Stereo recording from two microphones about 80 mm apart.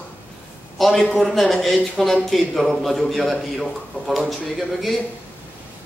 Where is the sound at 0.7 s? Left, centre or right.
Centre.